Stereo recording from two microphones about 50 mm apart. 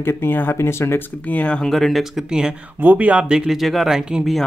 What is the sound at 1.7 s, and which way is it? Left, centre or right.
Speech, centre.